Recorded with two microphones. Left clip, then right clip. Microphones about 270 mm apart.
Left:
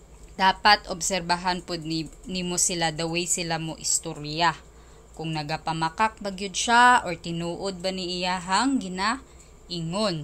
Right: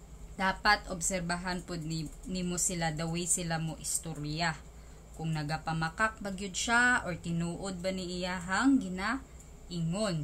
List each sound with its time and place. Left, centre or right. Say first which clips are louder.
0.4 s a woman's voice: left 9 dB; centre